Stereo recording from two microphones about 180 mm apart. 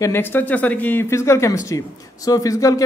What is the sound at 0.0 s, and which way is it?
A man's voice, 10° left (ahead or behind).